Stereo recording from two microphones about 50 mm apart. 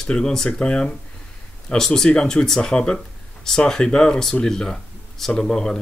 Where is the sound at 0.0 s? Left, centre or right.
Centre.